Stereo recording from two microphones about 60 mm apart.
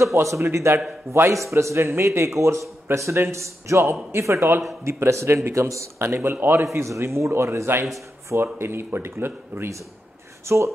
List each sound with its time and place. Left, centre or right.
0.0 s a man's voice: right
10.4 s speech: right